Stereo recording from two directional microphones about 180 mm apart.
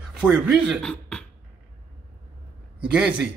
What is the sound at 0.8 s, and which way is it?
Speech, 5° left (ahead or behind).